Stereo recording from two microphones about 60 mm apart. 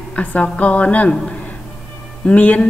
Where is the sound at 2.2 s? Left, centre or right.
Left.